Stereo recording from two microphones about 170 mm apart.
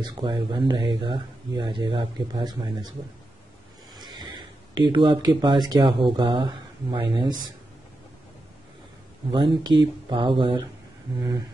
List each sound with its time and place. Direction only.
0.0 s speech: 25° right (ahead or behind)
3.9 s speech: 25° right (ahead or behind)
9.3 s speech: 25° right (ahead or behind)